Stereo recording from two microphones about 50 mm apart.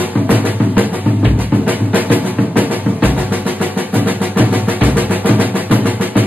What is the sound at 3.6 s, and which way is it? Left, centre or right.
Music, right.